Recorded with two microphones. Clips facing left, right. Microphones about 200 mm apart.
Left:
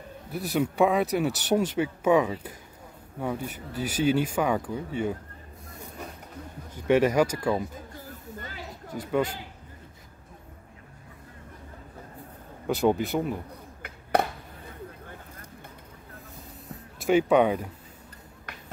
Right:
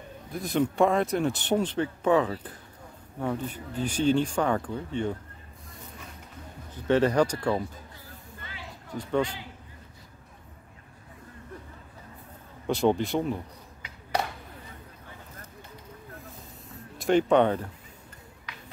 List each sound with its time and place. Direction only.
0.3 s a man's voice: 5° left (ahead or behind)
6.7 s speech: 10° left (ahead or behind)
7.9 s a sound: 40° left (ahead or behind)
12.6 s speech: 5° left (ahead or behind)
13.8 s a sound: 55° left (ahead or behind)
17.0 s speech: 5° left (ahead or behind)
18.5 s shuffle: 50° left (ahead or behind)